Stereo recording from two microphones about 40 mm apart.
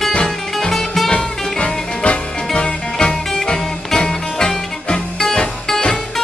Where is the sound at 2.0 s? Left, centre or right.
Left.